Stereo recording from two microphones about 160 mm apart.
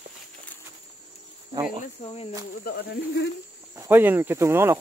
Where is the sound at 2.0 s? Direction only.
40° left (ahead or behind).